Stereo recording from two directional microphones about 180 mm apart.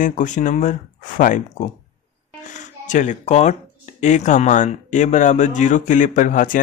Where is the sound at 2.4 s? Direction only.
45° left (ahead or behind).